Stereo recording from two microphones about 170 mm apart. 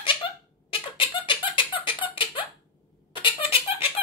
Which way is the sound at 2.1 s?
30° left (ahead or behind).